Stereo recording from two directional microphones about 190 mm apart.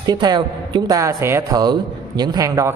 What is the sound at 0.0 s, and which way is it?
A man's voice, 20° right (ahead or behind).